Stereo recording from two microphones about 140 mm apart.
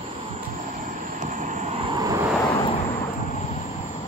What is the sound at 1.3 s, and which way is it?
Vehicle, 65° right (ahead or behind).